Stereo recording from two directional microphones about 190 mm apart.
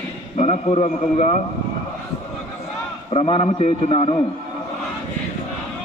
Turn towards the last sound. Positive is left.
turn(degrees=30)  # may be behind; listen again after turning